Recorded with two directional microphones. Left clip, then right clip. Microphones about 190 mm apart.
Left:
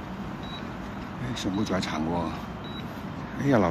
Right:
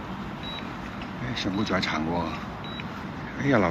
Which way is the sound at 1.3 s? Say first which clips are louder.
Right 2 dB; 5° left (ahead or behind).